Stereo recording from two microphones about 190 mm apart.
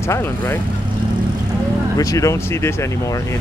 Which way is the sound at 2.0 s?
15° left (ahead or behind).